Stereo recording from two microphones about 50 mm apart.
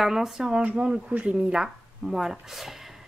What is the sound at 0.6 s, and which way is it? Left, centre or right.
Speech, right.